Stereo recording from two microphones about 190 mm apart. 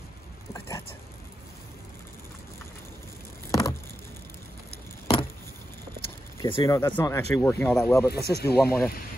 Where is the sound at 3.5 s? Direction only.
15° left (ahead or behind).